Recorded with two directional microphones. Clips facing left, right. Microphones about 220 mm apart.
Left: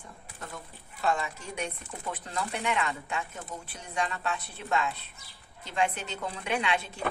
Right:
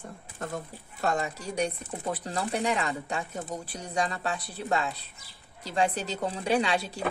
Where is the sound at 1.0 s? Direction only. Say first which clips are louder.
Right 1 dB; 40° right (ahead or behind).